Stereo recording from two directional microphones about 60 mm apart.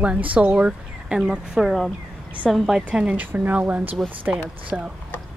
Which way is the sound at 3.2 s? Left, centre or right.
Right.